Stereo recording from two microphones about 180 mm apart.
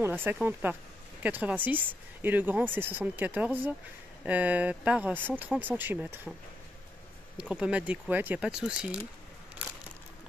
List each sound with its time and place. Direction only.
0.0 s a woman's voice: 10° right (ahead or behind)
7.3 s speech: 5° right (ahead or behind)